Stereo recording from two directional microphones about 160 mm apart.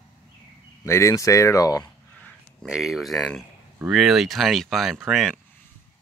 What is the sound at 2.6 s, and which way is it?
Speech, 5° right (ahead or behind).